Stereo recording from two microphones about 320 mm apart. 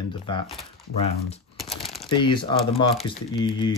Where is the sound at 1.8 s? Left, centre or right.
Centre.